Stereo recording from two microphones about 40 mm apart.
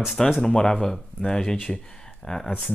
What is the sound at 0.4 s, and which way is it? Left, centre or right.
Speech, centre.